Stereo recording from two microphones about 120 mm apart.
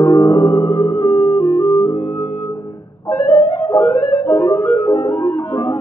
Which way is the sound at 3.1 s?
20° left (ahead or behind).